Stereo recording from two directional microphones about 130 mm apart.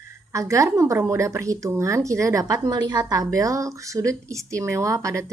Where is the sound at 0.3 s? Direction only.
25° right (ahead or behind).